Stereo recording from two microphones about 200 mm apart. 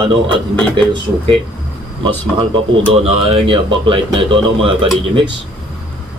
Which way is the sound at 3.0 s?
30° right (ahead or behind).